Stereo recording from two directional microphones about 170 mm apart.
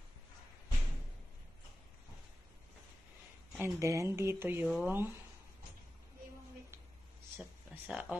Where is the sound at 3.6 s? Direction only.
15° right (ahead or behind).